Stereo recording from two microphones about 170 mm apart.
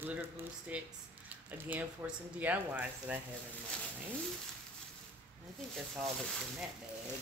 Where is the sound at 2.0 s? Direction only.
10° right (ahead or behind).